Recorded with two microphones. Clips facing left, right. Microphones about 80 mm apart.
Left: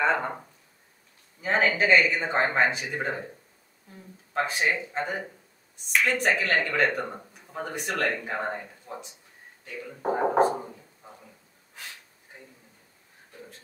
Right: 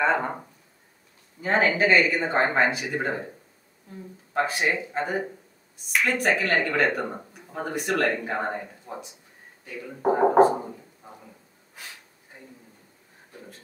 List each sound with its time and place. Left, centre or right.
0.0 s speech: centre
4.3 s speech: centre